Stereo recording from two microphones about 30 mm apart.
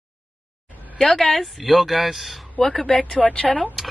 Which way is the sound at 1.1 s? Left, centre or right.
Centre.